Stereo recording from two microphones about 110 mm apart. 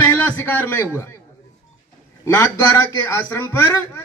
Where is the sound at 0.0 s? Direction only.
20° left (ahead or behind).